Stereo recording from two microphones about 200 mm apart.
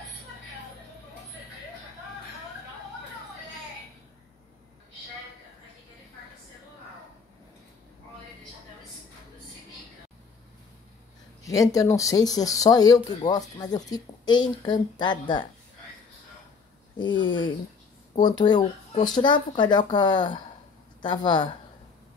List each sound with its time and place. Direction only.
11.4 s speech: 15° left (ahead or behind)
17.0 s speech: 25° left (ahead or behind)